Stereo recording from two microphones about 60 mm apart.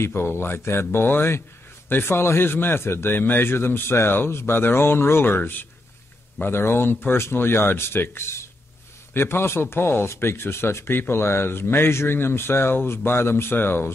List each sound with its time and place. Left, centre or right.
0.0 s a man's voice: left